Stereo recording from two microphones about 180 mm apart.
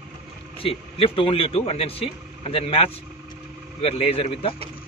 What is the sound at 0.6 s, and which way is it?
A man's voice, 30° left (ahead or behind).